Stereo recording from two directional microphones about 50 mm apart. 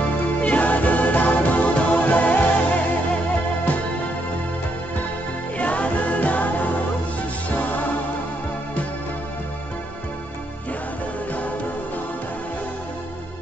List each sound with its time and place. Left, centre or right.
0.4 s music: left
5.6 s music: left